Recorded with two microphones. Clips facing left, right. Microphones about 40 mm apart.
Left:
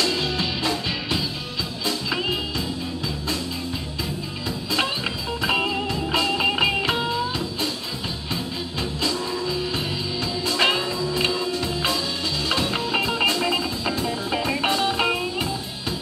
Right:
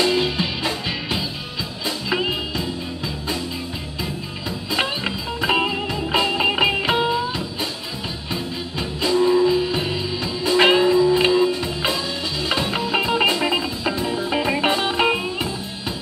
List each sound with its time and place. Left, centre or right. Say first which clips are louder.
0.0 s music: right 4 dB; centre
5.4 s music: right 3 dB; centre
9.0 s music: right 11 dB; centre